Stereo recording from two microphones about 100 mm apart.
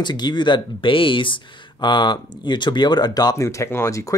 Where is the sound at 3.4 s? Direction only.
30° left (ahead or behind).